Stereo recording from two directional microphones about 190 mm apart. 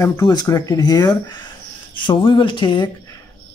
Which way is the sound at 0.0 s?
20° left (ahead or behind).